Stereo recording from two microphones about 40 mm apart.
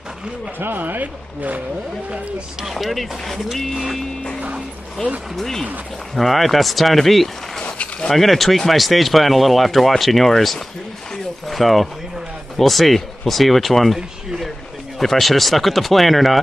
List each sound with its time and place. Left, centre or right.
0.6 s speech: right
2.8 s speech: centre
5.0 s speech: centre
7.6 s a sound: left
8.1 s speech: centre
13.9 s speech: centre
15.0 s speech: centre